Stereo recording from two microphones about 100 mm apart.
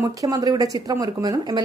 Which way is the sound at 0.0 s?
35° right (ahead or behind).